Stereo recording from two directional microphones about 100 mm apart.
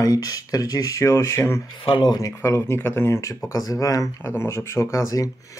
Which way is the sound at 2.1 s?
35° left (ahead or behind).